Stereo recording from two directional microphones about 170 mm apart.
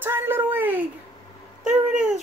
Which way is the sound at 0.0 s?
15° right (ahead or behind).